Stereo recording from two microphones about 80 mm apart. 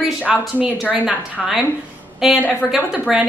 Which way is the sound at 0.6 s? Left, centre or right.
Centre.